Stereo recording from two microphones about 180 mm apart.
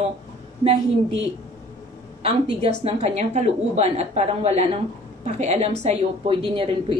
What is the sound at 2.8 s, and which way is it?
A woman's voice, 40° right (ahead or behind).